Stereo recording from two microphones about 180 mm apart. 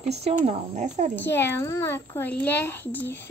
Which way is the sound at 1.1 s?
10° left (ahead or behind).